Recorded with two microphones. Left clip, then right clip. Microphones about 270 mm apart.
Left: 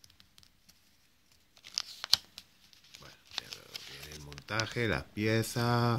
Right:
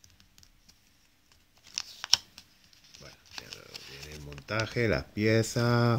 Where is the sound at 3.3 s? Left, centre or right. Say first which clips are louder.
Left 2 dB; centre.